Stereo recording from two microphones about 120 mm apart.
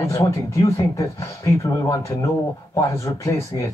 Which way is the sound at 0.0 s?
25° left (ahead or behind).